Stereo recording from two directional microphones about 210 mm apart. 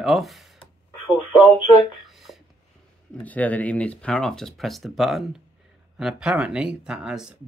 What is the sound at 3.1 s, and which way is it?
Speech, 5° left (ahead or behind).